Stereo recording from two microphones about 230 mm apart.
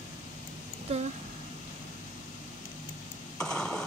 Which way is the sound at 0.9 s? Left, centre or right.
Right.